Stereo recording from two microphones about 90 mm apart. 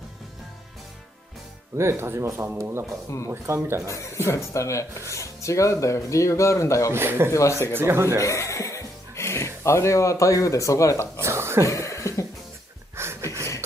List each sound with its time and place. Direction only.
1.8 s a man's voice: 30° right (ahead or behind)
3.8 s speech: 35° left (ahead or behind)
6.9 s a man's voice: 25° right (ahead or behind)
7.3 s speech: 35° left (ahead or behind)
7.7 s a man's voice: 25° right (ahead or behind)
8.2 s speech: 35° left (ahead or behind)
11.1 s a sound: 30° right (ahead or behind)
11.6 s cough: 35° left (ahead or behind)
12.9 s a sound: 30° right (ahead or behind)